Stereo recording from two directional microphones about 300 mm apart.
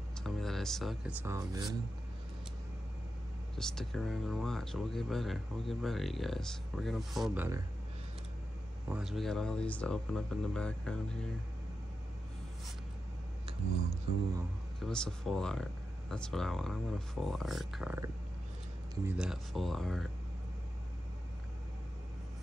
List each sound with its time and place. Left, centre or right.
0.2 s speech: centre
3.5 s speech: centre
8.8 s speech: centre
14.8 s speech: centre